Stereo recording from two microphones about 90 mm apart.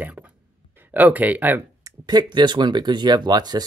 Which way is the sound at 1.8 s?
50° right (ahead or behind).